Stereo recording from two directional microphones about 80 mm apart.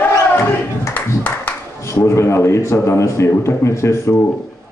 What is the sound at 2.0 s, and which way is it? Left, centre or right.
A man's voice, left.